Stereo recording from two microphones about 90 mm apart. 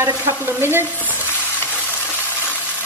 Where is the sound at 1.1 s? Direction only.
20° left (ahead or behind).